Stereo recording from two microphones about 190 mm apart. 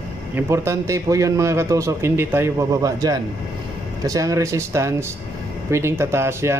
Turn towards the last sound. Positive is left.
turn(degrees=-15)  # may be behind; listen again after turning